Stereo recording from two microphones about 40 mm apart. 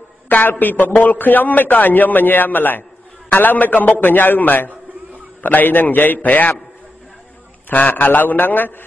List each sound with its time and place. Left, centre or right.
0.3 s a man's voice: left
7.7 s a man's voice: left